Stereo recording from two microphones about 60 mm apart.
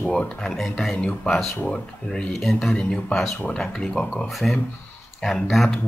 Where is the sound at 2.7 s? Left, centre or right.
Centre.